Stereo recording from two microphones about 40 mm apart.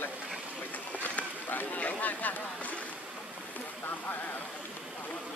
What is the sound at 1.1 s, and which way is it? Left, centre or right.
Run, left.